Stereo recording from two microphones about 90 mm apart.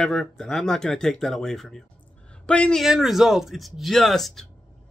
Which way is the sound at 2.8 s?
5° right (ahead or behind).